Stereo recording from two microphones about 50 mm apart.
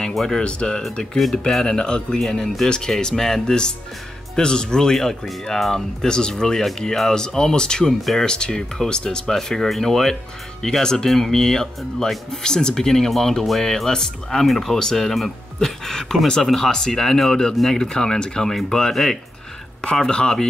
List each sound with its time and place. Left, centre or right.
0.1 s speech: centre
0.4 s speech: centre
1.1 s speech: centre
8.0 s speech: centre
8.3 s speech: centre